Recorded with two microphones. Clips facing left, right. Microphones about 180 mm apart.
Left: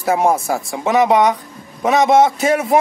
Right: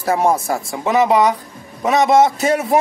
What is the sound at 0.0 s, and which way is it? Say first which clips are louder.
Speech: left 1 dB; centre (ahead or behind).